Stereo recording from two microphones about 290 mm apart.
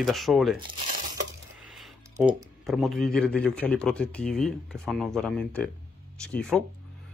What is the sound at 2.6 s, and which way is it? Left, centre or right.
A man's voice, centre.